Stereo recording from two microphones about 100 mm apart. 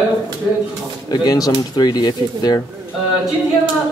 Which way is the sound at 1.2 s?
40° left (ahead or behind).